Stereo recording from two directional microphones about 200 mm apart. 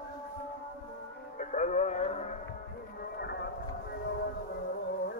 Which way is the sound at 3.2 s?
55° left (ahead or behind).